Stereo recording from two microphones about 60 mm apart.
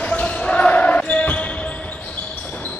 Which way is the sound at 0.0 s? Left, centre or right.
Left.